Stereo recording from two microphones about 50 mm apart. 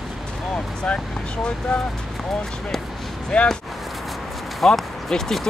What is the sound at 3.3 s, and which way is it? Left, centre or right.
Speech, centre.